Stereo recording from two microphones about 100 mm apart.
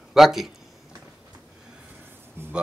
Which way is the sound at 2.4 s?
25° right (ahead or behind).